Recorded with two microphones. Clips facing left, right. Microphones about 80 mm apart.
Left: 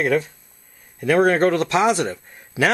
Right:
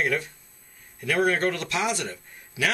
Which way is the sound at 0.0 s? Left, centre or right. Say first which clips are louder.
Left 7 dB; left.